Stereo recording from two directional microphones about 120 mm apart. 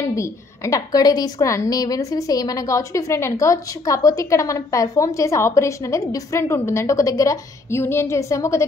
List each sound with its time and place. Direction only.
0.1 s a woman's voice: 25° left (ahead or behind)